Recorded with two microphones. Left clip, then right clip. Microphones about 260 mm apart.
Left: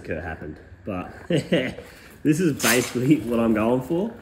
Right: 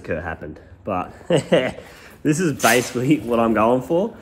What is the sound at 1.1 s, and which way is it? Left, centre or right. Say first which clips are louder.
Speech: right 4 dB; right.